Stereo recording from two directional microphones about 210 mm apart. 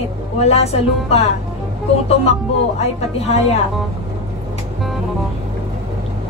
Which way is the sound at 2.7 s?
30° left (ahead or behind).